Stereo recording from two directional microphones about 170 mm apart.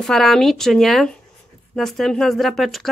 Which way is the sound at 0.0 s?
Centre (ahead or behind).